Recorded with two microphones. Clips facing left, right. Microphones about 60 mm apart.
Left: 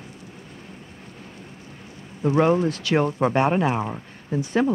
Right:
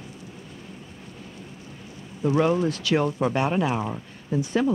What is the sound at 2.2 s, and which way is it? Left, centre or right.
Speech, left.